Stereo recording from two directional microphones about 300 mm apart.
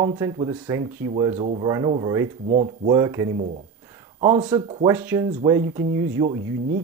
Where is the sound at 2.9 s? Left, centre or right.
Centre.